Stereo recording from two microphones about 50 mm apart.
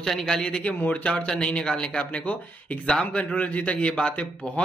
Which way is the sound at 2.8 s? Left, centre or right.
Centre.